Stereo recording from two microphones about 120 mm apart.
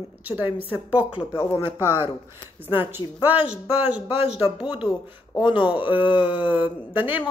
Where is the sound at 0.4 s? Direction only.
15° right (ahead or behind).